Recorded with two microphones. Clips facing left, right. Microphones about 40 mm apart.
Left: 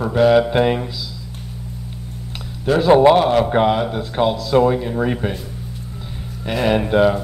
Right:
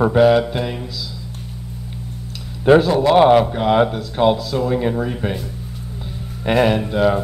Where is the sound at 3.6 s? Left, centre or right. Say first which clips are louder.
Left 3 dB; left.